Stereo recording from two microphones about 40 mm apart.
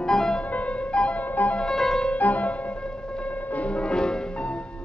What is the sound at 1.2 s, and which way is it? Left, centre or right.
Music, left.